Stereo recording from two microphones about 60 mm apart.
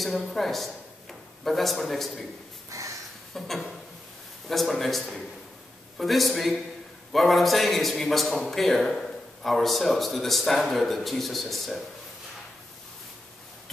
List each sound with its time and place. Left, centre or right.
0.0 s a man's voice: centre
2.7 s a sound: right
3.3 s a man's voice: centre